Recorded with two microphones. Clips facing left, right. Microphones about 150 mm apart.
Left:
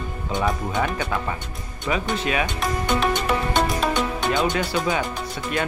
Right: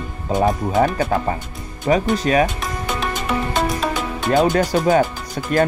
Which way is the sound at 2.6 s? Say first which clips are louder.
Left 2 dB; centre (ahead or behind).